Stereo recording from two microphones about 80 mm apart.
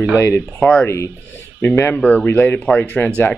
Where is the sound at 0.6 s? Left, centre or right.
Centre.